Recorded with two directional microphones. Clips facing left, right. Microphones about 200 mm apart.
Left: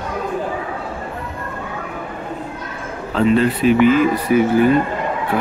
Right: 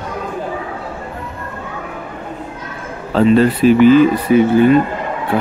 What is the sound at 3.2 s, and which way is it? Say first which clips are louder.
Speech: right 4 dB; 35° right (ahead or behind).